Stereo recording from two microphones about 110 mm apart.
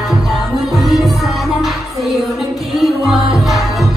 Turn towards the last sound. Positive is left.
turn(degrees=0)  # may be behind; listen again after turning